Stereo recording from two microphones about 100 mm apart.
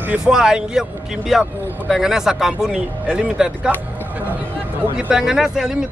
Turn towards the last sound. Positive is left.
turn(degrees=-5)  # may be behind; listen again after turning